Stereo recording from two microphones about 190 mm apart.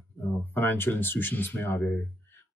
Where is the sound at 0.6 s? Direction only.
10° left (ahead or behind).